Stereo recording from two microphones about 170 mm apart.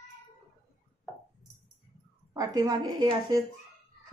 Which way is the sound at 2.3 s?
20° right (ahead or behind).